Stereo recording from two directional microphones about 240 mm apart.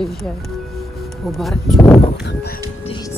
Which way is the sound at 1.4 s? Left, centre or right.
Centre.